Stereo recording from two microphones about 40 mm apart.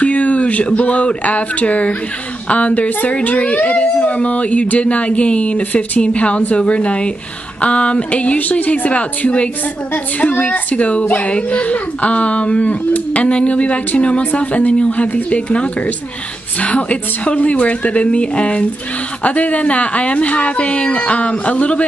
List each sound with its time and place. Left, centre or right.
0.0 s a woman's voice: left